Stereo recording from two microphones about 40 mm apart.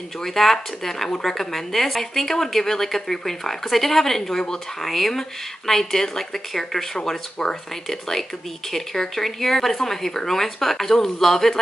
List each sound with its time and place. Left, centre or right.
0.2 s speech: centre
7.1 s speech: centre
7.8 s speech: centre